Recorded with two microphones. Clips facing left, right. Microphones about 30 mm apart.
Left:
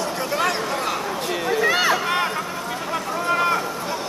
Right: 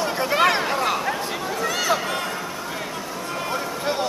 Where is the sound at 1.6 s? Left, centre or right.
Left.